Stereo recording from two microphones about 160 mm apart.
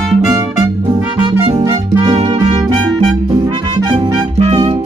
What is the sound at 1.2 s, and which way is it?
Music, 25° right (ahead or behind).